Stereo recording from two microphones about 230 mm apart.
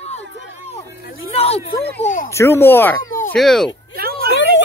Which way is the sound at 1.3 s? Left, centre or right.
Left.